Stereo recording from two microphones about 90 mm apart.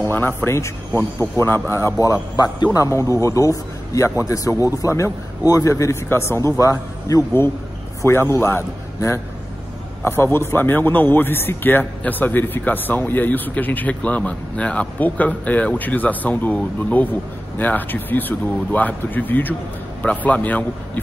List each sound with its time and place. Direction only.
0.4 s a man's voice: 30° left (ahead or behind)
2.3 s a man's voice: 45° left (ahead or behind); by 21.0 s 15° left (ahead or behind)